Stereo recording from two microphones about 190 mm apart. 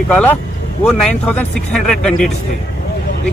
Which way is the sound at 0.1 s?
10° left (ahead or behind).